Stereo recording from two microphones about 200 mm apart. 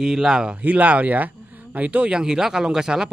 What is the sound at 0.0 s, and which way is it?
Speech, 5° right (ahead or behind).